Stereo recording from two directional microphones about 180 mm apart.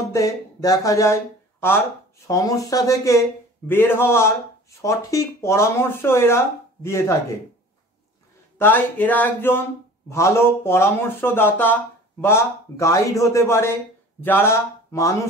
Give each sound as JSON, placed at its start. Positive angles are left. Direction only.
{"t": 0.1, "sound": "speech", "side_deg": 20}
{"t": 2.2, "sound": "speech", "side_deg": 20}
{"t": 8.5, "sound": "speech", "side_deg": 10}